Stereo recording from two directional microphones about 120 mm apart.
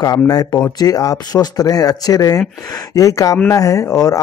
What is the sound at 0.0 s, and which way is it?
Speech, 30° left (ahead or behind).